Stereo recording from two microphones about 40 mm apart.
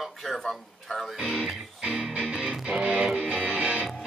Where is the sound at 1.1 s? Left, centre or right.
Centre.